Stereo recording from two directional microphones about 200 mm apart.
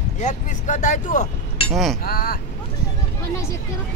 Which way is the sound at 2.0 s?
50° left (ahead or behind).